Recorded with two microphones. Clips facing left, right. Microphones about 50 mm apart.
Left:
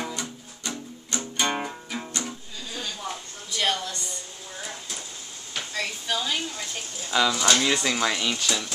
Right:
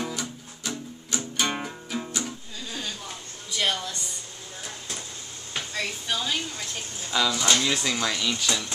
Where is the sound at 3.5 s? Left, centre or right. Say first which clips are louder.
Left 1 dB; centre.